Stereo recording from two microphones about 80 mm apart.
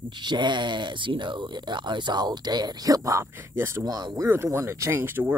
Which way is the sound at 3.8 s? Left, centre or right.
Right.